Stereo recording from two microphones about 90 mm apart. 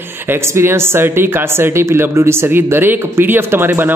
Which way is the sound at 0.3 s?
30° right (ahead or behind).